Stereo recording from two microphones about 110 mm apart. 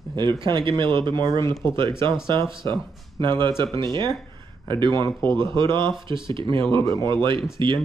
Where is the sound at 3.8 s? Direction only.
45° right (ahead or behind).